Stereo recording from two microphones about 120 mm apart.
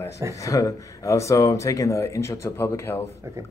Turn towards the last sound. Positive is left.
turn(degrees=20)  # may be behind; listen again after turning